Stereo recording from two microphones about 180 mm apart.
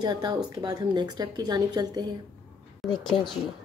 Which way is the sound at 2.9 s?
25° left (ahead or behind).